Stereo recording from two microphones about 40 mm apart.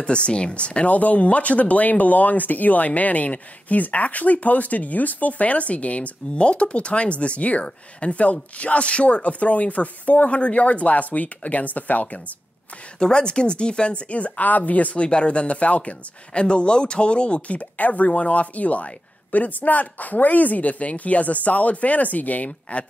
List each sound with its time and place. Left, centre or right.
0.0 s speech: left
13.0 s speech: left
15.0 s speech: left
16.4 s speech: left